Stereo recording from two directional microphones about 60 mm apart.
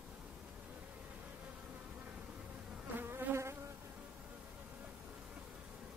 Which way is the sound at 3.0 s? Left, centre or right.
Right.